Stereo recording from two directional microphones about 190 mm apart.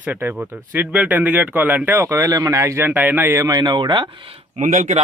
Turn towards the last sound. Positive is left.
turn(degrees=-40)  # may be behind; listen again after turning